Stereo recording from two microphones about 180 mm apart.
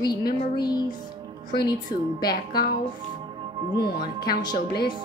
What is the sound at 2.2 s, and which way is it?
Speech, 60° left (ahead or behind).